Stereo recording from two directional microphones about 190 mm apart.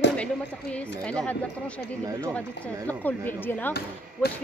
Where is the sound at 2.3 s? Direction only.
10° left (ahead or behind).